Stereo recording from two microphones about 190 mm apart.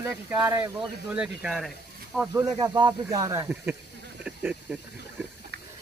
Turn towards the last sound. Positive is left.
turn(degrees=-10)  # may be behind; listen again after turning